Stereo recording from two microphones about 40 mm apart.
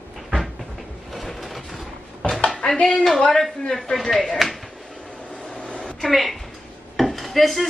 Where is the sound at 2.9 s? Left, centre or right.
Centre.